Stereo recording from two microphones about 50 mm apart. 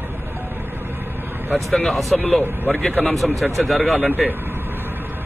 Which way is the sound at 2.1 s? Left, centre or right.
Left.